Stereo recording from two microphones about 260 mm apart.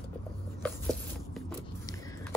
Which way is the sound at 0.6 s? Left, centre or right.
Centre.